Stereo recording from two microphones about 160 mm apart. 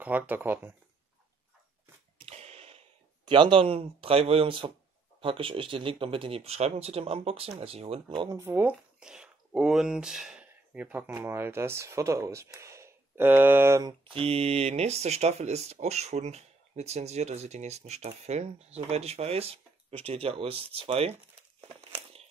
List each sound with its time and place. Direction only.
0.0 s speech: 10° right (ahead or behind)
2.2 s a sound: 40° right (ahead or behind)
3.3 s speech: 30° right (ahead or behind)
8.4 s speech: 10° right (ahead or behind)
14.0 s speech: 35° right (ahead or behind)